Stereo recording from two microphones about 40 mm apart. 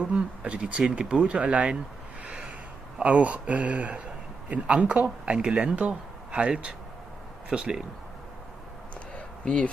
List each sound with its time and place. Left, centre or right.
0.1 s speech: right
3.0 s speech: right
7.4 s speech: centre
9.1 s a sound: left